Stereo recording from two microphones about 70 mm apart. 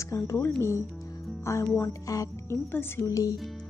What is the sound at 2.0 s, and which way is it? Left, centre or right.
Speech, left.